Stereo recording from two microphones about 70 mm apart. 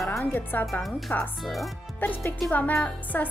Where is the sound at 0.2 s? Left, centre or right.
Left.